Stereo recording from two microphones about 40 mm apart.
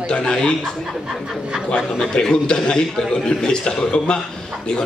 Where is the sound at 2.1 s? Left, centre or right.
Left.